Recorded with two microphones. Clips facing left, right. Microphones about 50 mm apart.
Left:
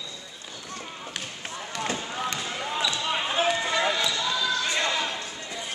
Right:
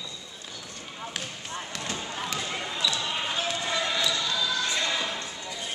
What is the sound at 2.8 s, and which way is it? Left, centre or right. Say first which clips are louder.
Basketball bounce: left 2 dB; left.